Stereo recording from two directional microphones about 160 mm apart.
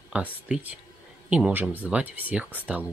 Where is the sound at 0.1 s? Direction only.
5° right (ahead or behind).